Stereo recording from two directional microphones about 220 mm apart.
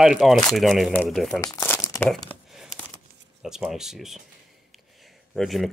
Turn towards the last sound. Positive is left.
turn(degrees=0)  # may be behind; listen again after turning